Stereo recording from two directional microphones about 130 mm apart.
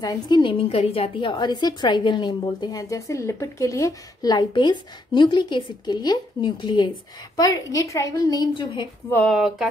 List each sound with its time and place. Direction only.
0.0 s a woman's voice: 30° left (ahead or behind)
7.3 s a woman's voice: 25° left (ahead or behind)
9.3 s speech: 5° right (ahead or behind)